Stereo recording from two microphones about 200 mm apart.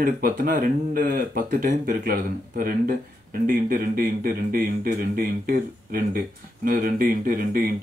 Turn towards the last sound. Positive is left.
turn(degrees=-45)  # may be behind; listen again after turning